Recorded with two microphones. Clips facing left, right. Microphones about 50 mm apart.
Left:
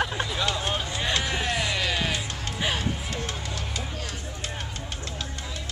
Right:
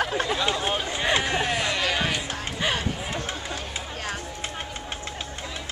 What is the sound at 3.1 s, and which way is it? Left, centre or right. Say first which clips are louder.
Music: right 2 dB; centre.